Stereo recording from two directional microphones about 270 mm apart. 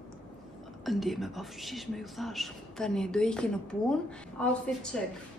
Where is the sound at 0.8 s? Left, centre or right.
Centre.